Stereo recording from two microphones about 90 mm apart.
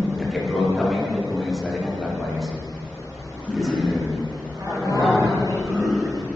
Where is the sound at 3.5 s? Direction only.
Centre (ahead or behind).